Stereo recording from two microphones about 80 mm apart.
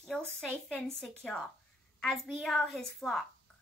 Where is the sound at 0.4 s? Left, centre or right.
Centre.